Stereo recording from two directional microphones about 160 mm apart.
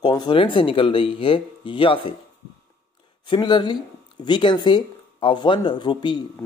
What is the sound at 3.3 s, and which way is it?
Speech, 30° left (ahead or behind).